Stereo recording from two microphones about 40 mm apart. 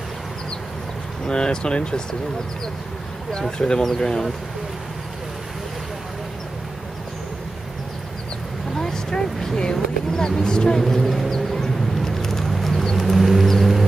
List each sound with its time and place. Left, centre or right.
1.2 s speech: centre
3.4 s speech: centre
8.7 s vehicle: centre
10.8 s vehicle: centre
13.5 s a sound: centre